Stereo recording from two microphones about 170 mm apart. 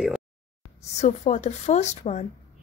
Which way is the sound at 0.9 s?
45° left (ahead or behind).